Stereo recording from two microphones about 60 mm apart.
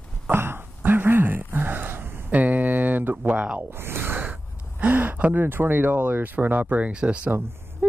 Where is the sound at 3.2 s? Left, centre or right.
Right.